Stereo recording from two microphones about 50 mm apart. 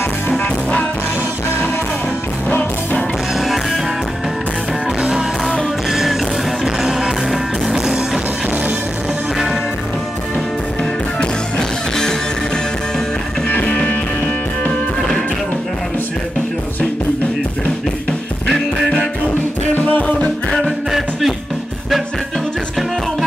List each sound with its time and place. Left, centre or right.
0.4 s music: left
3.3 s music: centre
5.9 s music: centre
10.8 s music: centre
13.5 s music: left
18.5 s music: centre
19.9 s music: left
20.2 s music: centre
20.9 s music: centre